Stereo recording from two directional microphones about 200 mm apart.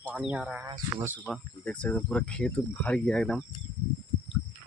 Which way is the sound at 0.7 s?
20° right (ahead or behind).